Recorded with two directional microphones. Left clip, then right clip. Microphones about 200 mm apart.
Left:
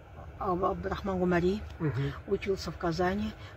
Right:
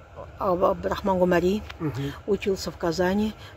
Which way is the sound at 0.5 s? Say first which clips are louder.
Right 8 dB; 55° right (ahead or behind).